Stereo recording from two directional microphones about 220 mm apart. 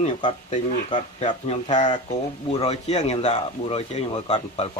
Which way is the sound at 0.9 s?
30° left (ahead or behind).